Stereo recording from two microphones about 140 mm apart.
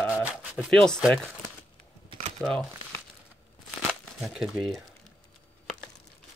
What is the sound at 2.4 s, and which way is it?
Speech, 5° left (ahead or behind).